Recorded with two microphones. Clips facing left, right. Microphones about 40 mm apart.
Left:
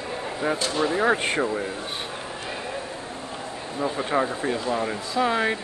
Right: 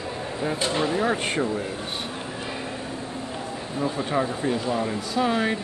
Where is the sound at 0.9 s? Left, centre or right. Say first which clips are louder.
Left 2 dB; centre.